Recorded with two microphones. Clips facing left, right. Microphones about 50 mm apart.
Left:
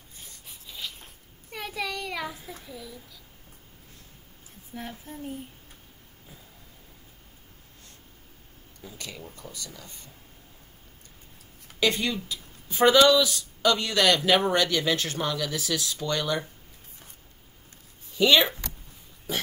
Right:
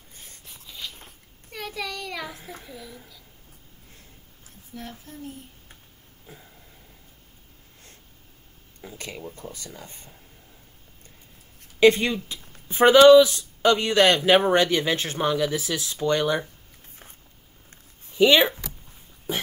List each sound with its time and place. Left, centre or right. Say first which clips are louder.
0.7 s a sound: even; centre
2.7 s a woman's voice: even; centre
4.7 s speech: left 1 dB; centre
8.8 s speech: right 4 dB; right
11.8 s speech: right 8 dB; right
18.1 s speech: right 3 dB; right